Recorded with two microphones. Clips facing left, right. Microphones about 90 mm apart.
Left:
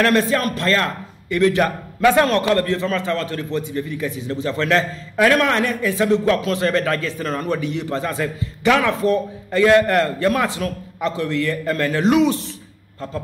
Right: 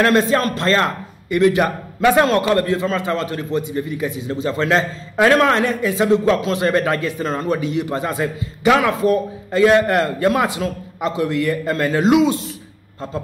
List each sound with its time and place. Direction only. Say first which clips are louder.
0.0 s a man's voice: right 2 dB; 20° right (ahead or behind)